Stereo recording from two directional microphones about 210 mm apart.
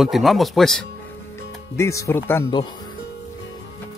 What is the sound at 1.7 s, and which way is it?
Speech, 15° left (ahead or behind).